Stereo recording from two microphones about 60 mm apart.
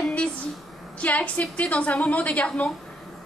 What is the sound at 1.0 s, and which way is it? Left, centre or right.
A woman's voice, left.